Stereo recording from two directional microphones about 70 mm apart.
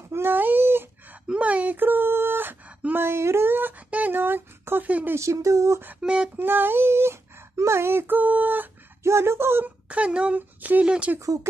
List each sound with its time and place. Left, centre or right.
0.1 s a sound: right
1.2 s a sound: centre
4.8 s speech: right
5.1 s speech: right
5.9 s a woman's voice: centre
6.3 s speech: right
9.0 s speech: right
9.8 s a woman's voice: centre